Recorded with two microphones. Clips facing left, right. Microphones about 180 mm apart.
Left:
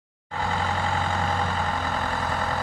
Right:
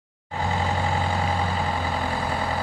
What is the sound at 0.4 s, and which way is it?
Vehicle, 15° right (ahead or behind).